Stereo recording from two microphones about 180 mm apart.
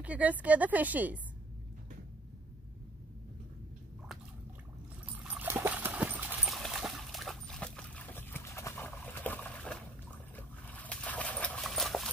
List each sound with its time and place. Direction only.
0.0 s a woman's voice: 10° right (ahead or behind)
5.2 s dog: 10° right (ahead or behind); by 9.8 s 5° left (ahead or behind)
10.3 s a sound: 10° left (ahead or behind)